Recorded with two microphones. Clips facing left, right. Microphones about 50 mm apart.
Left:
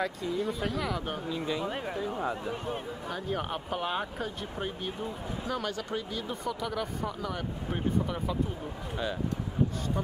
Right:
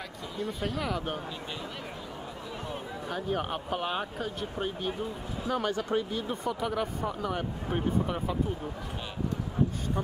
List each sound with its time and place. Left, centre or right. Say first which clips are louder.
0.6 s speech: even; centre
3.1 s speech: right 2 dB; centre
5.5 s speech: right 5 dB; right